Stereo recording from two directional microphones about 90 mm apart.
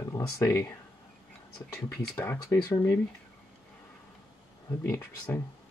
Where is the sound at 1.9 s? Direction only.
30° left (ahead or behind).